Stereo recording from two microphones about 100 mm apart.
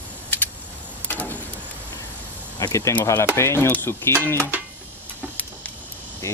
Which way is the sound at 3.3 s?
25° left (ahead or behind).